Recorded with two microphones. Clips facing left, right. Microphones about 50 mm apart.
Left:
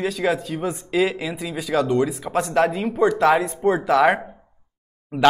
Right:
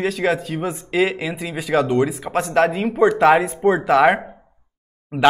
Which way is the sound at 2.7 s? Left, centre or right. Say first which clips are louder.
Right 3 dB; right.